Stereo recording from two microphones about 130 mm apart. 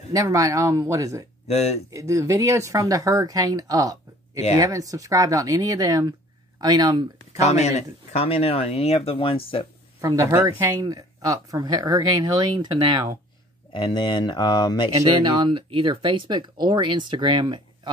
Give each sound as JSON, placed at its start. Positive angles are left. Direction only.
{"t": 0.1, "sound": "speech", "side_deg": -25}
{"t": 1.5, "sound": "speech", "side_deg": 55}
{"t": 1.9, "sound": "speech", "side_deg": -25}
{"t": 7.3, "sound": "speech", "side_deg": 60}
{"t": 10.0, "sound": "speech", "side_deg": -20}
{"t": 13.7, "sound": "speech", "side_deg": 35}
{"t": 14.9, "sound": "speech", "side_deg": -30}